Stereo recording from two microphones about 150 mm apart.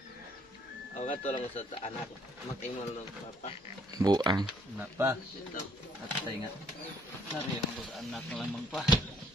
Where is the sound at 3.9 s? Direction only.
25° right (ahead or behind).